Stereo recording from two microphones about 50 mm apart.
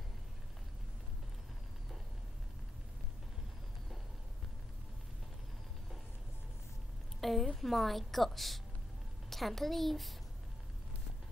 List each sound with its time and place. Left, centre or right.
7.2 s a woman's voice: centre